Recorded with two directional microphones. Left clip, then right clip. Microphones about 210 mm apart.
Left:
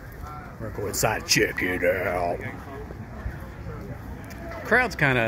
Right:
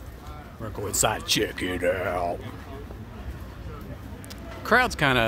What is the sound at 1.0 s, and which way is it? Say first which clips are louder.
Speech: left 2 dB; 5° right (ahead or behind).